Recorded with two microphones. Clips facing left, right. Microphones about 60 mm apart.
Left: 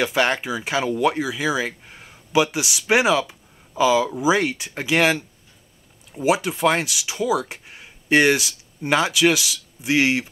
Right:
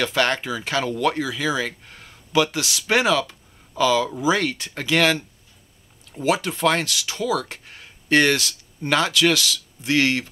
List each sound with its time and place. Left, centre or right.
0.0 s speech: centre
6.2 s speech: centre